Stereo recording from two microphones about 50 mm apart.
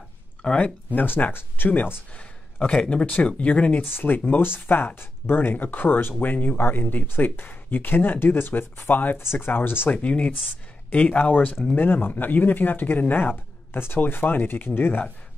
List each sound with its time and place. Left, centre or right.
0.4 s speech: centre
0.8 s speech: left
2.1 s speech: left
3.9 s speech: left
9.2 s speech: left
10.0 s speech: left
11.7 s speech: left